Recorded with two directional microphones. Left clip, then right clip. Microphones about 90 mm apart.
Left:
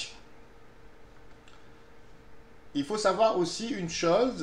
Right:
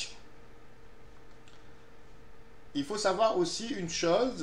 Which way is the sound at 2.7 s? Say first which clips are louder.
Left 3 dB; 30° left (ahead or behind).